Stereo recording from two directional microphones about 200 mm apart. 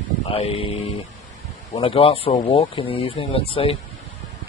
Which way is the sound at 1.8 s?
30° left (ahead or behind).